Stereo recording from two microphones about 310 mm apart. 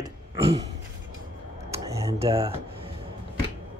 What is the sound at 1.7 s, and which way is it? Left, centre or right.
Speech, centre.